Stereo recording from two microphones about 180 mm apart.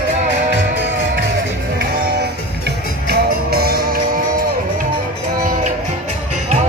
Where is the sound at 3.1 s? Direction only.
60° right (ahead or behind).